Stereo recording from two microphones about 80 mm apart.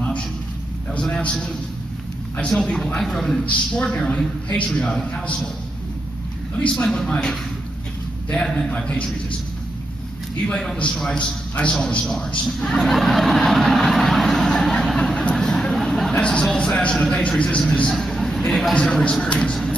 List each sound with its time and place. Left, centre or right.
1.0 s a woman's voice: centre
2.5 s a man's voice: centre
6.7 s a woman's voice: centre
8.4 s a woman's voice: centre
10.4 s a man's voice: centre
12.4 s a sound: centre
16.4 s a woman's voice: centre